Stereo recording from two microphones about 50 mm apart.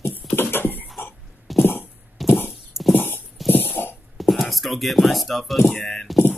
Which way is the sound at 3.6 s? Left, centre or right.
Left.